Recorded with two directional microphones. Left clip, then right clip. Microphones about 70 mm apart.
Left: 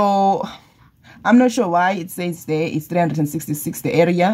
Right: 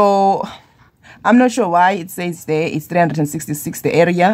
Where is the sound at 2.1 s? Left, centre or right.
Right.